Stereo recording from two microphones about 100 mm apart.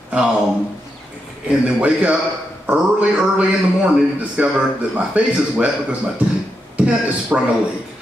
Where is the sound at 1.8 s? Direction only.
10° right (ahead or behind).